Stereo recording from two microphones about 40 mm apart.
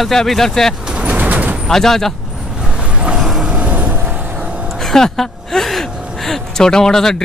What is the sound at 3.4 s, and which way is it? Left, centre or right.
Vehicle, right.